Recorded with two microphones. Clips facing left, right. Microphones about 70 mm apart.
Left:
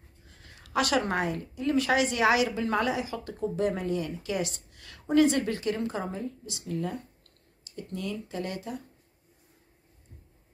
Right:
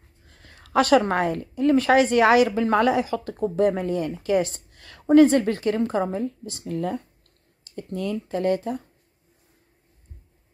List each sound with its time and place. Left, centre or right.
0.3 s a woman's voice: right